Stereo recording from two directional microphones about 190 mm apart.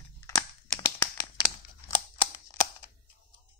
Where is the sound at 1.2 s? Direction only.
20° left (ahead or behind).